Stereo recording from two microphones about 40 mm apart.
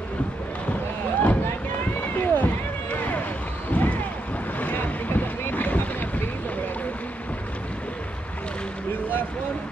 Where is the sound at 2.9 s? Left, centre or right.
Left.